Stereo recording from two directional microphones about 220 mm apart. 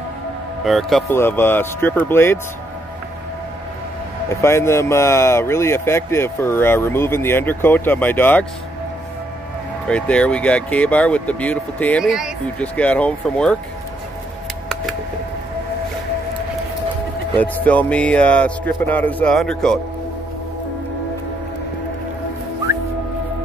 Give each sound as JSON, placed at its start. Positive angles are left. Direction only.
{"t": 0.7, "sound": "speech", "side_deg": 0}
{"t": 4.4, "sound": "speech", "side_deg": 10}
{"t": 9.8, "sound": "speech", "side_deg": 5}
{"t": 17.4, "sound": "speech", "side_deg": 5}